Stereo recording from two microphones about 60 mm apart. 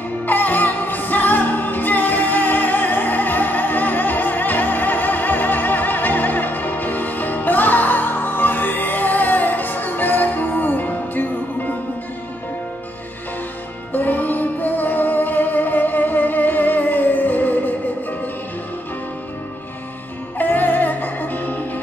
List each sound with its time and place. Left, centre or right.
0.3 s music: left
13.9 s music: left
20.3 s music: left